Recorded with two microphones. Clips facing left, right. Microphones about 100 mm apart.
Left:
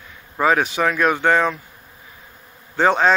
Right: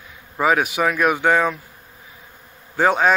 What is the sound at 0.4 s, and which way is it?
A man's voice, 5° right (ahead or behind).